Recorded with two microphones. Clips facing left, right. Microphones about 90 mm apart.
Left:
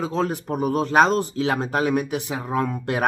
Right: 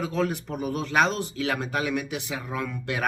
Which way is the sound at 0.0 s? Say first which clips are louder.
Left 3 dB; 35° left (ahead or behind).